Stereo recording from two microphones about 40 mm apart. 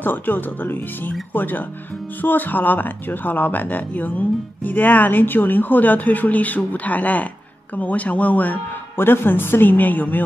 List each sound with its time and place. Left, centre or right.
0.0 s a woman's voice: left
8.9 s a woman's voice: left